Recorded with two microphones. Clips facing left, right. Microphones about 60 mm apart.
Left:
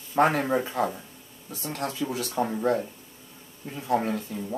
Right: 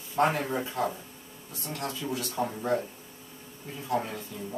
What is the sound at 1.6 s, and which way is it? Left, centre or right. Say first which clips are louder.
Speech: left 4 dB; left.